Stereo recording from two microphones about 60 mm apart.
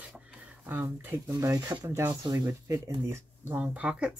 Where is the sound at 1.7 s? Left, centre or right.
Right.